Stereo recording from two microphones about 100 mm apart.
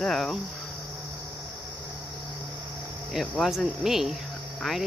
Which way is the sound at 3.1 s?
Centre (ahead or behind).